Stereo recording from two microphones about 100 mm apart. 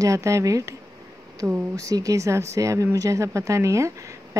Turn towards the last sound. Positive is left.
turn(degrees=-30)  # may be behind; listen again after turning